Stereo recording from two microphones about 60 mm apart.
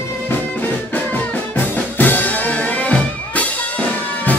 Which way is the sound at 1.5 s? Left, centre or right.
Left.